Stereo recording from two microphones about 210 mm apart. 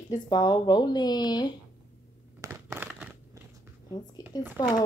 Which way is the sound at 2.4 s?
15° right (ahead or behind).